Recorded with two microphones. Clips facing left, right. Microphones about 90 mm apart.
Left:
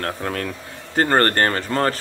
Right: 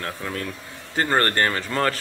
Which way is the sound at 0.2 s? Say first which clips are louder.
Left 4 dB; 55° left (ahead or behind).